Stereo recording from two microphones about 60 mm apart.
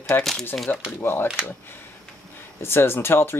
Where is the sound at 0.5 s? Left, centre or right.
Left.